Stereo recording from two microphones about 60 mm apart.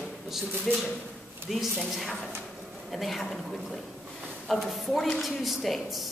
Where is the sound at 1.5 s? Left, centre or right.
Centre.